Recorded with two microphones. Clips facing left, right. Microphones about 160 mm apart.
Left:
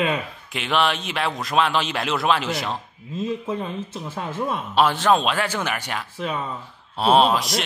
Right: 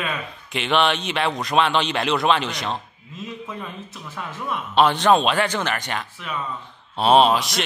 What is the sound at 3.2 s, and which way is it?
Speech, 30° left (ahead or behind).